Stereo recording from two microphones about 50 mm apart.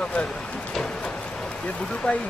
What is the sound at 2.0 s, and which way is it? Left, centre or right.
Speech, centre.